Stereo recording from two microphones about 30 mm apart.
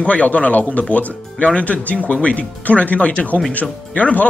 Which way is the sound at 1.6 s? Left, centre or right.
Left.